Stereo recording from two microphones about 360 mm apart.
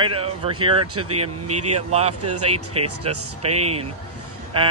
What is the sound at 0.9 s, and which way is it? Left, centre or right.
Speech, right.